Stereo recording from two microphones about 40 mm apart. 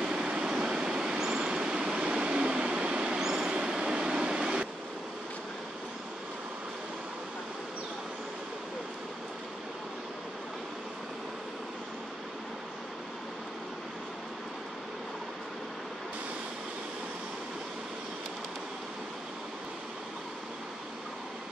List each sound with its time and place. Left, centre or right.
0.0 s vehicle: right
1.4 s train: right
3.2 s vehicle: centre
3.7 s a sound: right